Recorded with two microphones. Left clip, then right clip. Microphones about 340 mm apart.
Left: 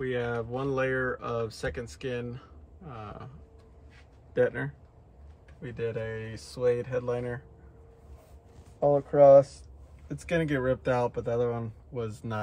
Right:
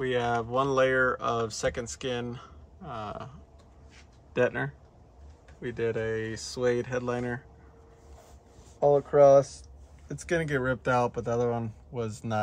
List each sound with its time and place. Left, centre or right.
0.0 s speech: centre
4.3 s speech: right
8.7 s speech: right